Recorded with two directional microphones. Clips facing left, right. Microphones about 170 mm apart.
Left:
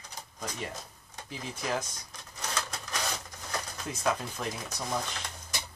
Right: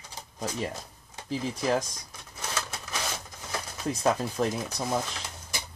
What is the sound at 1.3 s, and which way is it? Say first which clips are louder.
Speech: right 7 dB; 35° right (ahead or behind).